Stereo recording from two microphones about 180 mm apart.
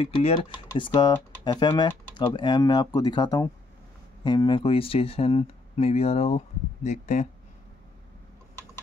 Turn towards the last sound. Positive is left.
turn(degrees=40)  # may be behind; listen again after turning